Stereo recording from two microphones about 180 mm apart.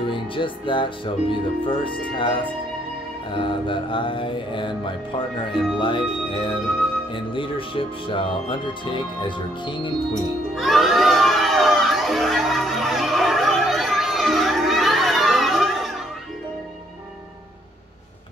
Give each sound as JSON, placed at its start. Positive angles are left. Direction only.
{"t": 0.0, "sound": "speech", "side_deg": 30}
{"t": 10.1, "sound": "children shouting", "side_deg": 0}